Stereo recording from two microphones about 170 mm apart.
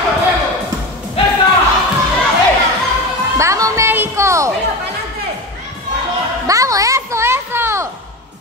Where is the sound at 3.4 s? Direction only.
15° right (ahead or behind).